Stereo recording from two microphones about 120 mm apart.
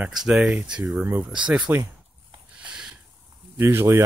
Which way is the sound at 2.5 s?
10° right (ahead or behind).